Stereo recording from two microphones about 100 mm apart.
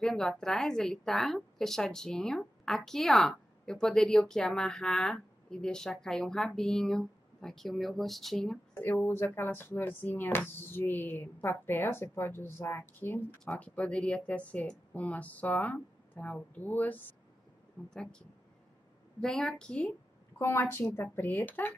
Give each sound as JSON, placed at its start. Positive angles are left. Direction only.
{"t": 0.0, "sound": "a woman's voice", "side_deg": 5}
{"t": 8.7, "sound": "speech", "side_deg": 20}
{"t": 17.8, "sound": "speech", "side_deg": 5}
{"t": 19.1, "sound": "speech", "side_deg": 5}
{"t": 20.3, "sound": "speech", "side_deg": 25}